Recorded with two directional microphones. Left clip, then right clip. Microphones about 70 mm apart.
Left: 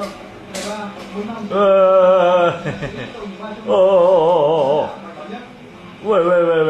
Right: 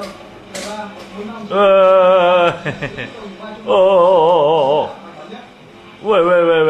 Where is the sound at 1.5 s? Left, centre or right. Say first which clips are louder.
Right 2 dB; centre.